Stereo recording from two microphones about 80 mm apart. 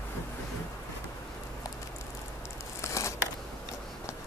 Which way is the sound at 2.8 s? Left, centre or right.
Left.